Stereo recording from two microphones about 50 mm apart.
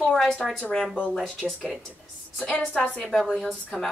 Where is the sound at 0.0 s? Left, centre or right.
Centre.